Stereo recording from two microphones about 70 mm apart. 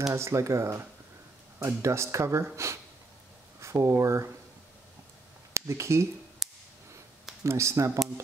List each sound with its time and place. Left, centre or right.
0.1 s speech: right
5.5 s speech: right
7.4 s speech: right